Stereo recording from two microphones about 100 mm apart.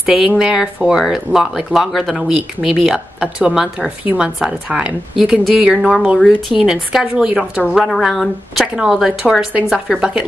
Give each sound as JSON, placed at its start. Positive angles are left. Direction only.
{"t": 0.0, "sound": "a woman's voice", "side_deg": -5}